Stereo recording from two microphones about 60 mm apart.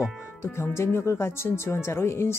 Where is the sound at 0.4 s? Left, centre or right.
Left.